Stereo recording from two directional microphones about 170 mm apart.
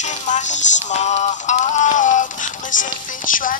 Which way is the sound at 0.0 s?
45° left (ahead or behind).